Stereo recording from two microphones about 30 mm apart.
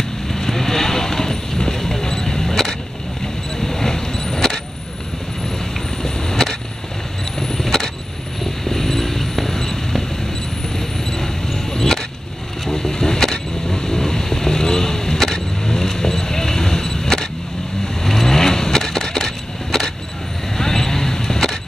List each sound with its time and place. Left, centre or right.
0.3 s vehicle: centre
5.6 s vehicle: centre